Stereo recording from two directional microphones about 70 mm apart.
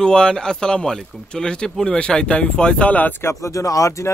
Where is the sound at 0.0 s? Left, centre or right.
Centre.